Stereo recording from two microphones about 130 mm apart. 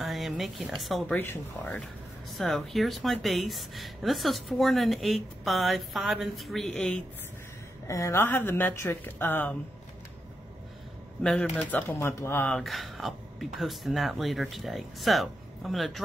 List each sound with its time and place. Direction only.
0.0 s a woman's voice: centre (ahead or behind)
1.1 s a woman's voice: 20° left (ahead or behind)
2.3 s speech: centre (ahead or behind)
7.8 s a woman's voice: 20° left (ahead or behind)
11.2 s a woman's voice: 10° left (ahead or behind)
12.4 s speech: centre (ahead or behind)